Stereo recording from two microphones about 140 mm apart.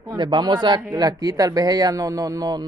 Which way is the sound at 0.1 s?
30° right (ahead or behind).